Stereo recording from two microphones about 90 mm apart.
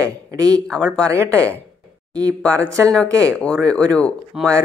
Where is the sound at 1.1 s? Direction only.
35° right (ahead or behind).